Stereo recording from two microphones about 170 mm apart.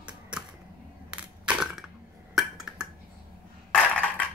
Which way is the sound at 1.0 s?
5° right (ahead or behind).